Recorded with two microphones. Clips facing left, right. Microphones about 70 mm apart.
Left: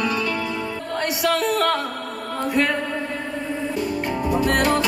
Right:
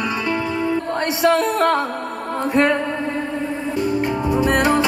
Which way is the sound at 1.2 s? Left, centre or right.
Right.